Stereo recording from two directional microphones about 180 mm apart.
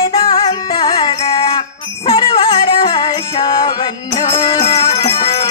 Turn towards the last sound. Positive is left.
turn(degrees=30)  # may be behind; listen again after turning